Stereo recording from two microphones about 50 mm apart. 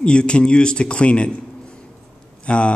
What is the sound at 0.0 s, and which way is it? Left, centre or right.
A man's voice, centre.